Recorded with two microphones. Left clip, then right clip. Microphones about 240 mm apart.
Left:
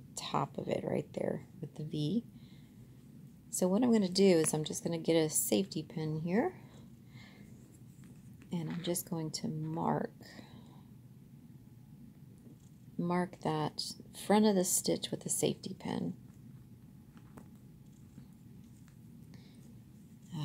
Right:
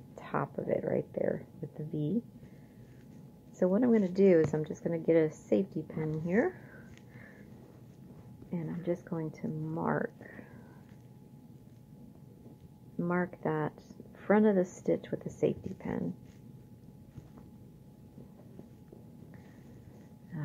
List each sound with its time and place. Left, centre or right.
0.2 s a woman's voice: left
3.5 s a woman's voice: left
8.5 s a woman's voice: left
13.0 s a woman's voice: left